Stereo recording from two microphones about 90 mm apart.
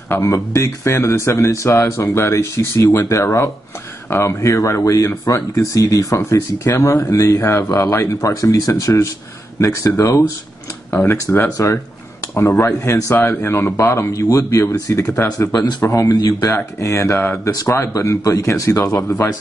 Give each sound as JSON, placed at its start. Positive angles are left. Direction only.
{"t": 0.1, "sound": "speech", "side_deg": 35}
{"t": 11.5, "sound": "speech", "side_deg": 35}
{"t": 16.5, "sound": "speech", "side_deg": 35}